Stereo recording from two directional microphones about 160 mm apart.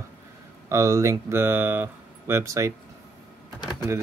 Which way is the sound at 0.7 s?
20° right (ahead or behind).